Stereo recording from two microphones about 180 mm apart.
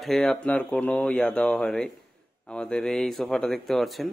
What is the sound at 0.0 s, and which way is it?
Speech, 5° left (ahead or behind).